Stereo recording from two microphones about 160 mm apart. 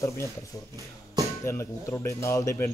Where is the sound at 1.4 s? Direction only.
20° left (ahead or behind).